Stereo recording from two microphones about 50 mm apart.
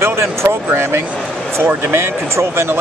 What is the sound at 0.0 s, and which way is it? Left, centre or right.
Speech, right.